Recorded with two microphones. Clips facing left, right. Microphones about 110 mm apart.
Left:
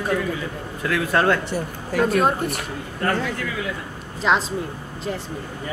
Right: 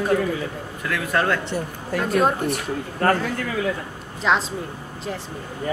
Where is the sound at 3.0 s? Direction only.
40° right (ahead or behind).